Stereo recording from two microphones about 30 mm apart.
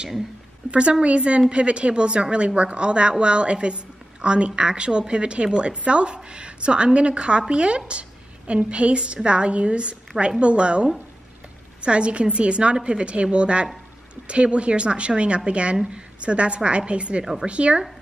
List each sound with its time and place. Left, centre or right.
0.7 s a woman's voice: right
17.2 s speech: centre
17.5 s a woman's voice: right